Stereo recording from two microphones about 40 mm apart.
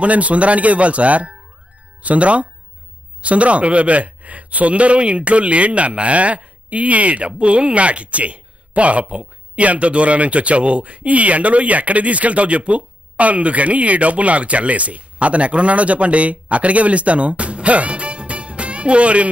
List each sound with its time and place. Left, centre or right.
0.0 s speech: right